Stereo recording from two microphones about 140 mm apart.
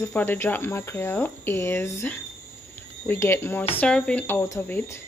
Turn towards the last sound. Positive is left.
turn(degrees=15)  # may be behind; listen again after turning